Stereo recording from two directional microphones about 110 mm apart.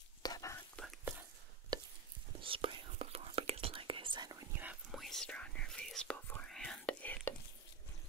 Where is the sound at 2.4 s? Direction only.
50° right (ahead or behind).